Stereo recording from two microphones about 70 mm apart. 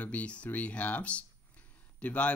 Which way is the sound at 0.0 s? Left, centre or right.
Centre.